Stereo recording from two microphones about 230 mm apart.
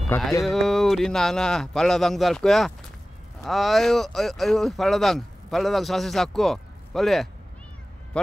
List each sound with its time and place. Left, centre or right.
0.1 s speech: centre